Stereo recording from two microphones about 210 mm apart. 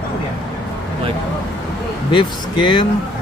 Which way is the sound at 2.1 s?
25° left (ahead or behind).